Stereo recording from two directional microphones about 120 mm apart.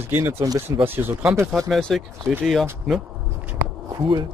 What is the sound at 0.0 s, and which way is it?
Speech, 20° right (ahead or behind).